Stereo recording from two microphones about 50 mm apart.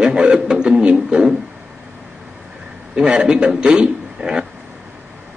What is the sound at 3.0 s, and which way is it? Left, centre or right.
A man's voice, centre.